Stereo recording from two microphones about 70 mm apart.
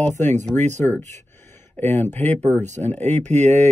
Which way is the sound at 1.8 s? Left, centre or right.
Left.